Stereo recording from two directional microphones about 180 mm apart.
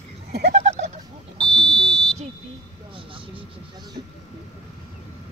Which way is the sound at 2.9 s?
30° right (ahead or behind).